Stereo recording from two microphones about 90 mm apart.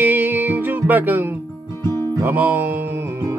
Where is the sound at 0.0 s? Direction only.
20° right (ahead or behind).